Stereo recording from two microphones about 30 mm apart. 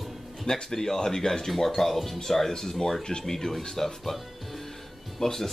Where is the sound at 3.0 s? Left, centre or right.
Left.